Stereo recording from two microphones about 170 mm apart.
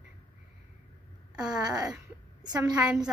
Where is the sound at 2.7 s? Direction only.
5° right (ahead or behind).